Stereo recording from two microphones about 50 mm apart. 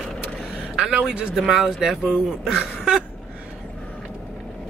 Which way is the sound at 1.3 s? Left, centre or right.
Centre.